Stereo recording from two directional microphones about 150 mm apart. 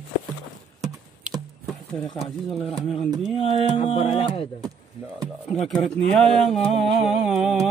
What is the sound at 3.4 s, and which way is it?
Music, 40° left (ahead or behind).